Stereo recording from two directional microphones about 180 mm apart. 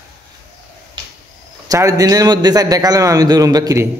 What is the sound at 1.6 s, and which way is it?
A man's voice, 20° right (ahead or behind).